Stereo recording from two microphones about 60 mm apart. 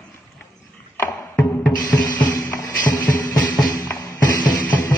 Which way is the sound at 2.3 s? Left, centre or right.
Left.